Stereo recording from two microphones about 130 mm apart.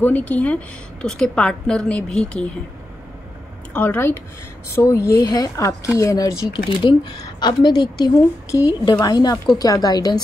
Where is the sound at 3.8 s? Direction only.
15° left (ahead or behind).